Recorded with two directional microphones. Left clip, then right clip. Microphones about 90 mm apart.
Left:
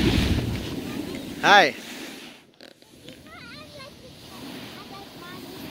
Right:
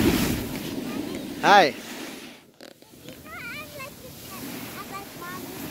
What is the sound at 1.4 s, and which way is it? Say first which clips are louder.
Speech: even; 30° right (ahead or behind).